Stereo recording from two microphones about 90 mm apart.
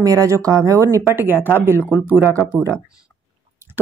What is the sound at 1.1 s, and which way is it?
Speech, 25° right (ahead or behind).